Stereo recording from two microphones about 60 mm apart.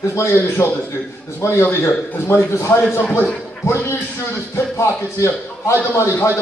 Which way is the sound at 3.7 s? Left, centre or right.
Left.